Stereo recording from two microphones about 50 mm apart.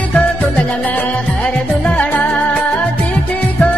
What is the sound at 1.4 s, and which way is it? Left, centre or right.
Music, left.